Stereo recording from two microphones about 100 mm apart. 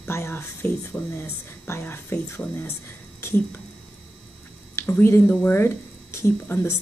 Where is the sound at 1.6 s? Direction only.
25° left (ahead or behind).